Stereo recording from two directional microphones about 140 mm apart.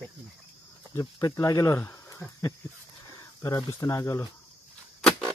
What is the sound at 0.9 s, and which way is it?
Speech, 20° left (ahead or behind).